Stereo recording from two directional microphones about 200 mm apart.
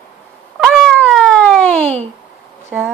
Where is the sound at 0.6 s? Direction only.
Centre (ahead or behind).